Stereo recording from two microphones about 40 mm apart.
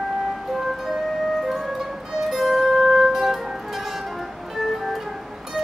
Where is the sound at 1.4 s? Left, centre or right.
Centre.